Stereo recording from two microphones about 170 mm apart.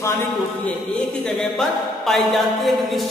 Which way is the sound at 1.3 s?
Centre (ahead or behind).